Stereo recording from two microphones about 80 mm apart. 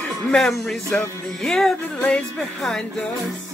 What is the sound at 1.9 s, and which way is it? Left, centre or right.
Speech, centre.